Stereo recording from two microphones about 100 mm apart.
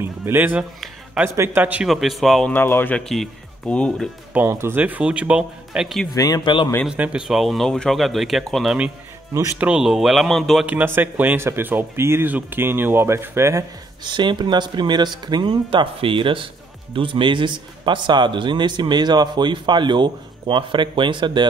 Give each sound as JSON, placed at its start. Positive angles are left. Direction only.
{"t": 0.0, "sound": "speech", "side_deg": -25}
{"t": 1.9, "sound": "speech", "side_deg": 0}
{"t": 2.5, "sound": "speech", "side_deg": 20}
{"t": 3.0, "sound": "speech", "side_deg": 5}
{"t": 4.5, "sound": "speech", "side_deg": -25}
{"t": 6.1, "sound": "speech", "side_deg": 40}
{"t": 6.9, "sound": "speech", "side_deg": -10}
{"t": 10.7, "sound": "speech", "side_deg": -15}
{"t": 14.0, "sound": "a man's voice", "side_deg": -50}